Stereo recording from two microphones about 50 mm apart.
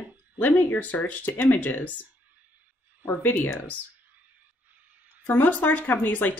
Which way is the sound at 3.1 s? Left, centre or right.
Left.